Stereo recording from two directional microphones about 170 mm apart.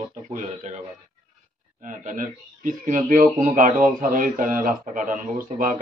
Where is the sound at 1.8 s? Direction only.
50° right (ahead or behind).